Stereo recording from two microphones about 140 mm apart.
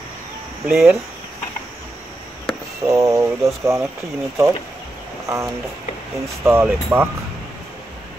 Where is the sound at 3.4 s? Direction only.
20° right (ahead or behind).